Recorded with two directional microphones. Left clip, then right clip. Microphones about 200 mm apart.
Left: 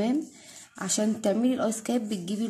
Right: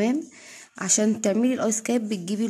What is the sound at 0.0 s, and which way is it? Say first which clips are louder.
Speech: right 3 dB; 40° right (ahead or behind).